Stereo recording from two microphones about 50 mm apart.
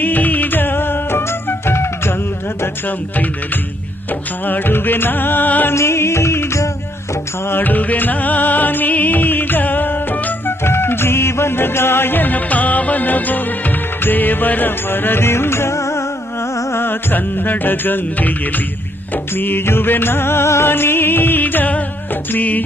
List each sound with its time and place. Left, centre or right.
0.0 s music: left
4.5 s music: left
5.8 s music: left
7.4 s music: left
10.6 s music: left
16.8 s music: left
19.3 s music: left
20.6 s music: left